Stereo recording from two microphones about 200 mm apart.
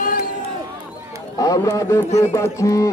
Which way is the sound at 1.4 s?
15° left (ahead or behind).